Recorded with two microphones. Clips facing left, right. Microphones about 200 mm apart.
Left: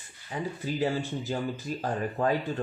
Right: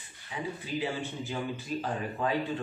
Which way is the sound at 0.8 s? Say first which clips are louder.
Left 5 dB; 40° left (ahead or behind).